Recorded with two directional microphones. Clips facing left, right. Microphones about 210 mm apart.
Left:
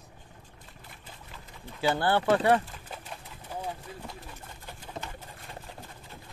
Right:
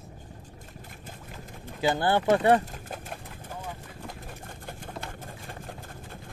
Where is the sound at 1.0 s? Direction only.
45° right (ahead or behind).